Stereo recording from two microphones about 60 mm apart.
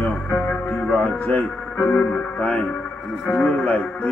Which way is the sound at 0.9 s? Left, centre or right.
Left.